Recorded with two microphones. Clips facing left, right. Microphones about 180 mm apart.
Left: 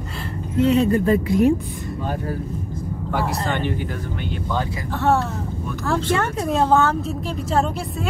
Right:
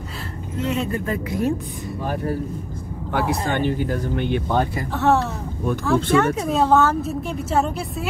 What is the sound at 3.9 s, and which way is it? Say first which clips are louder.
Speech: right 6 dB; 55° right (ahead or behind).